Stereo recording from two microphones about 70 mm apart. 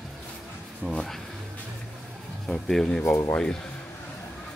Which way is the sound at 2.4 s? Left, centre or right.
Centre.